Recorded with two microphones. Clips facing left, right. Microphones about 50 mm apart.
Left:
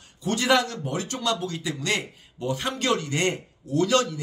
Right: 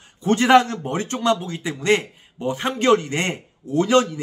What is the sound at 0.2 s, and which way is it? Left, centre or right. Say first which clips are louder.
Speech: right 7 dB; right.